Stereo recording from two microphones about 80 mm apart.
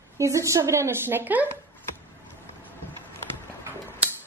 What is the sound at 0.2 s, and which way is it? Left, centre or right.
A woman's voice, right.